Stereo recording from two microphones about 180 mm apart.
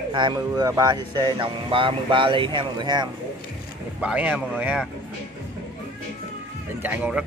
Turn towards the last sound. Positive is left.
turn(degrees=-5)  # may be behind; listen again after turning